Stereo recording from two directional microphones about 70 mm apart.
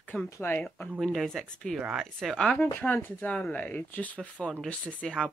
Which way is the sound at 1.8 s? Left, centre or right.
Centre.